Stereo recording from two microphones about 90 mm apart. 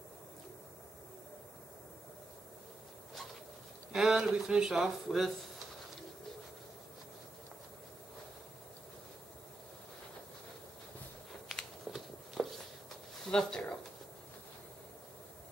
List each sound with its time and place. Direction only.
3.9 s speech: 5° right (ahead or behind)
11.4 s a sound: centre (ahead or behind)
13.3 s speech: 10° left (ahead or behind)